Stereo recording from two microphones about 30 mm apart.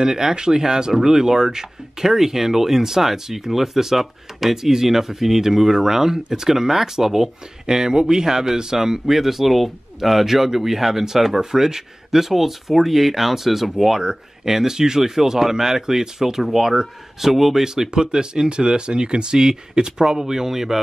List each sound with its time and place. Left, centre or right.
0.0 s speech: right
2.0 s speech: centre
7.6 s speech: right
17.2 s speech: centre
17.9 s speech: right